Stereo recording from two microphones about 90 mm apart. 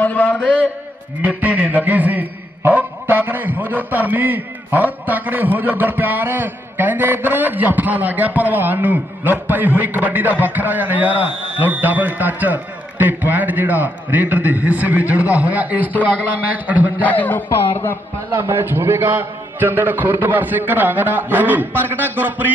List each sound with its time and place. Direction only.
0.0 s a sound: 20° left (ahead or behind)
1.2 s a man's voice: 15° right (ahead or behind)
17.0 s a man's voice: 20° left (ahead or behind)
18.3 s speech: 25° right (ahead or behind)